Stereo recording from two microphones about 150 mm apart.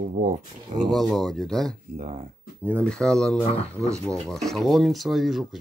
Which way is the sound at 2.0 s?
45° right (ahead or behind).